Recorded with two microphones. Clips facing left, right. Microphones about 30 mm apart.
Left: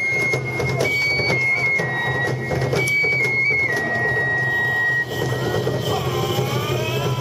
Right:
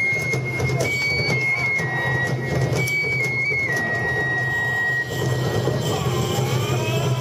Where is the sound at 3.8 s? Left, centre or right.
Centre.